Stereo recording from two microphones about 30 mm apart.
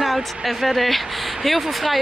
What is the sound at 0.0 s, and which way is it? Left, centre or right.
Speech, centre.